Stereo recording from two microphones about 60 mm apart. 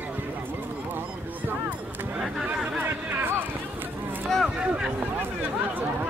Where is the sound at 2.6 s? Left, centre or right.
Right.